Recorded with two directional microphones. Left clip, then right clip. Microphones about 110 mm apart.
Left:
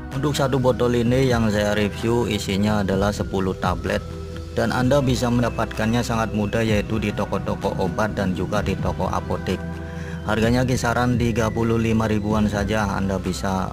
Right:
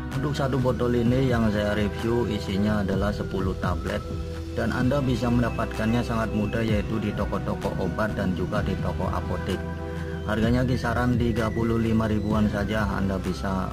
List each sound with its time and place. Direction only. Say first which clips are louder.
0.2 s speech: left 6 dB; 25° left (ahead or behind)
10.2 s speech: left 5 dB; 25° left (ahead or behind)